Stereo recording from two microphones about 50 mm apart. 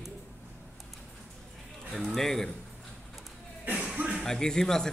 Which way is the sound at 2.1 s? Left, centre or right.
Centre.